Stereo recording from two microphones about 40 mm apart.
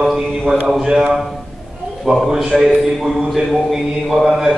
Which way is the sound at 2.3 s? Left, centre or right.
Centre.